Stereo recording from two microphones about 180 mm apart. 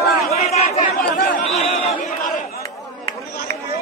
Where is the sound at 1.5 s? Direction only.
35° left (ahead or behind).